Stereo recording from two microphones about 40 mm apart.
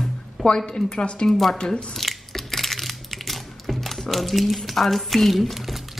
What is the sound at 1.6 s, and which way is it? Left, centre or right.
Speech, left.